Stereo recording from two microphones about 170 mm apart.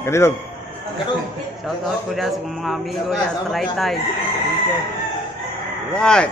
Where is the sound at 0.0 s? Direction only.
15° left (ahead or behind).